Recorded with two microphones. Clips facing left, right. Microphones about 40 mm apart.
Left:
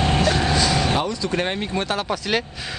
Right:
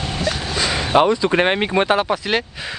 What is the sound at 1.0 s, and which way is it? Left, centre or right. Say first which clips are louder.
Speech: right 7 dB; right.